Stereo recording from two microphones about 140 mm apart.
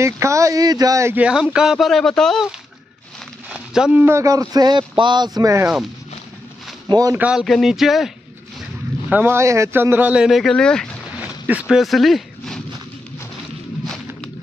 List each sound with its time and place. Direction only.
0.0 s a man's voice: 20° right (ahead or behind)
1.2 s a man's voice: 5° right (ahead or behind); by 5.7 s 20° right (ahead or behind)
6.9 s a man's voice: 25° right (ahead or behind)
7.2 s a man's voice: 5° right (ahead or behind)
9.1 s speech: 15° right (ahead or behind); by 12.6 s centre (ahead or behind)